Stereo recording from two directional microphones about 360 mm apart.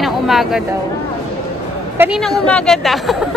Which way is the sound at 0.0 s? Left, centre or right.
Centre.